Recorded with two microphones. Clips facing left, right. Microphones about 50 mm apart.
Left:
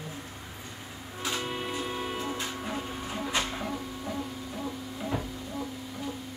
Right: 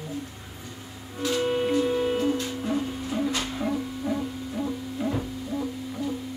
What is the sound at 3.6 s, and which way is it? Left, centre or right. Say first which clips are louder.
Music: right 7 dB; centre.